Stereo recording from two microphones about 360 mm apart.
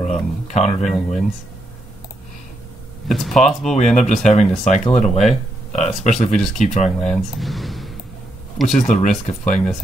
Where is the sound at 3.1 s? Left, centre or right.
Centre.